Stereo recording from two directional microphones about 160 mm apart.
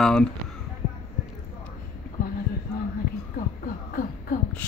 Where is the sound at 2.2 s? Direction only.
70° left (ahead or behind).